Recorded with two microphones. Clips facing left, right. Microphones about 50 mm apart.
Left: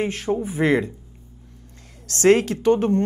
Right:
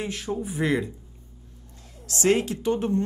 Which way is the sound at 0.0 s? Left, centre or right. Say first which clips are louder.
Left 6 dB; left.